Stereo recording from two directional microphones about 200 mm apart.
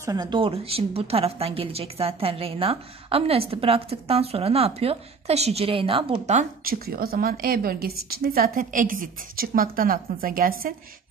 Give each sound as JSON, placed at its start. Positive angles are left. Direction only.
{"t": 0.0, "sound": "a woman's voice", "side_deg": -20}